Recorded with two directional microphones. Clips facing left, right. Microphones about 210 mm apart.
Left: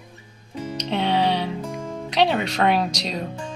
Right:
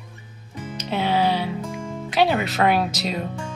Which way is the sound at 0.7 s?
5° right (ahead or behind).